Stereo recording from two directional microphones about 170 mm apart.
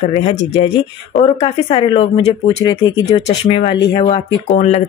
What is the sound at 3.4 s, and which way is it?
Speech, 35° left (ahead or behind).